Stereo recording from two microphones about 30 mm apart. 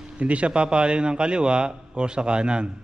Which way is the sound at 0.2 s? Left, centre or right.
Right.